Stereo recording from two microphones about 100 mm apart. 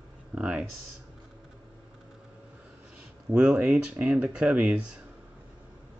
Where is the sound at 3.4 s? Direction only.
10° right (ahead or behind).